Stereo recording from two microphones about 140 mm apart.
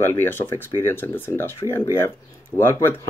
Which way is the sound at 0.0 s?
15° left (ahead or behind).